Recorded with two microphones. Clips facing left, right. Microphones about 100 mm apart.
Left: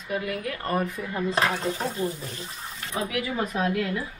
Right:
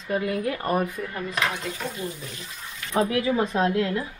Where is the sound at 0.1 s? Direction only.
25° right (ahead or behind); by 1.0 s 10° right (ahead or behind).